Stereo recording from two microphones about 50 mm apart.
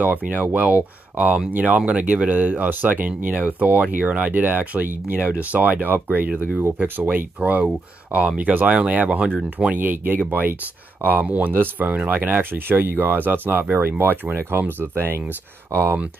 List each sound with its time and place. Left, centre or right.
0.0 s speech: right
1.9 s speech: right
6.0 s speech: right
7.0 s speech: right
8.4 s speech: right